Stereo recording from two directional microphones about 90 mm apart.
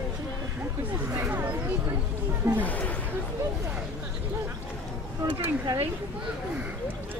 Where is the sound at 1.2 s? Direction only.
20° right (ahead or behind).